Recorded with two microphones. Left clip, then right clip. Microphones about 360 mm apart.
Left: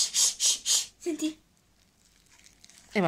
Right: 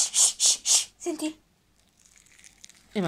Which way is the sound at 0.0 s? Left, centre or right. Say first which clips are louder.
Right 2 dB; centre.